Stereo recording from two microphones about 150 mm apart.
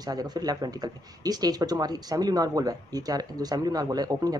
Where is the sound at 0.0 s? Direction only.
25° right (ahead or behind).